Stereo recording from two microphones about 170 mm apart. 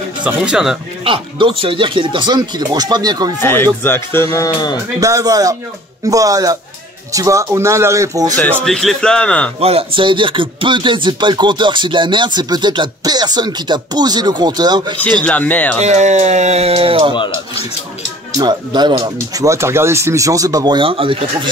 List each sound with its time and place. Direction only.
0.2 s speech: 5° right (ahead or behind)
1.0 s speech: 30° right (ahead or behind)
3.3 s speech: 15° left (ahead or behind)
5.0 s speech: 20° right (ahead or behind)
8.6 s speech: 5° left (ahead or behind)
9.6 s speech: 35° right (ahead or behind)
15.2 s speech: 10° left (ahead or behind)
15.8 s speech: 40° right (ahead or behind)
17.1 s speech: 25° left (ahead or behind)
18.4 s speech: 25° right (ahead or behind)